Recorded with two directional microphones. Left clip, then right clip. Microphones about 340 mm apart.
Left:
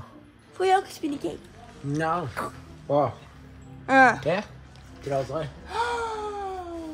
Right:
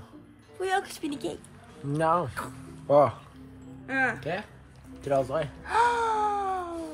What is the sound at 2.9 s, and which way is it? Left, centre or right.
Speech, right.